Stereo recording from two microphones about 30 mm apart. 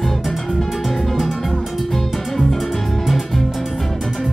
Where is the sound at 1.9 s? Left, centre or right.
Centre.